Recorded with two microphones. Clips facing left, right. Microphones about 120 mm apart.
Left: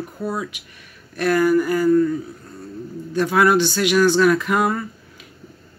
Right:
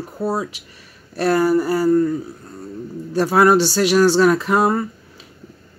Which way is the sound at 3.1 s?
35° right (ahead or behind).